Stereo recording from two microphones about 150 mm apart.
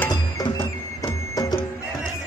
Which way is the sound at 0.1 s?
25° left (ahead or behind).